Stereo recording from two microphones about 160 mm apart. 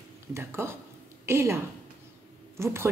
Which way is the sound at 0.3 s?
15° right (ahead or behind).